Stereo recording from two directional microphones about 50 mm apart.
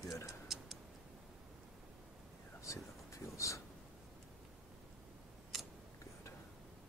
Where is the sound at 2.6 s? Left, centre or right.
Left.